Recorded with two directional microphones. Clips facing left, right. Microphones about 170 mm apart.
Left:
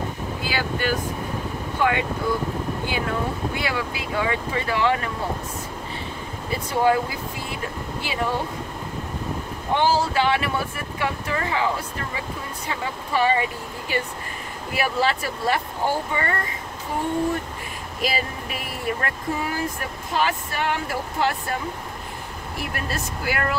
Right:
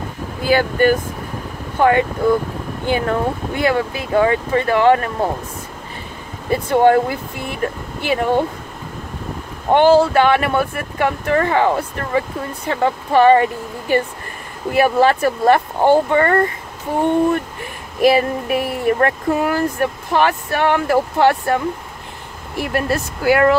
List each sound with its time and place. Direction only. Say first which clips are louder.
0.5 s speech: right 11 dB; 50° right (ahead or behind)
6.5 s speech: right 8 dB; 55° right (ahead or behind)
9.8 s speech: right 9 dB; 60° right (ahead or behind)
18.0 s speech: right 13 dB; 60° right (ahead or behind)
22.6 s speech: right 10 dB; 65° right (ahead or behind)